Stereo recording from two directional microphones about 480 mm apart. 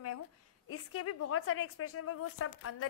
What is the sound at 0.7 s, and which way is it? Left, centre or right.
A woman's voice, left.